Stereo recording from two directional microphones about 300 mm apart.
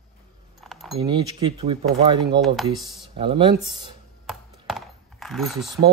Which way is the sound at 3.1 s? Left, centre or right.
Centre.